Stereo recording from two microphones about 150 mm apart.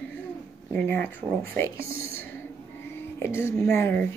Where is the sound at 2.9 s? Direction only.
15° left (ahead or behind).